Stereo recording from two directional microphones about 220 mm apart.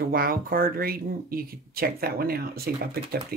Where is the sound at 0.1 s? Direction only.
40° right (ahead or behind).